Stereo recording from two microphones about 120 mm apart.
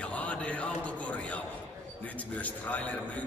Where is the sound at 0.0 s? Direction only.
10° left (ahead or behind).